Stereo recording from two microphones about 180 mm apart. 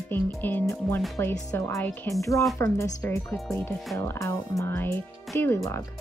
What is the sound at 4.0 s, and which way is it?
Speech, 15° left (ahead or behind).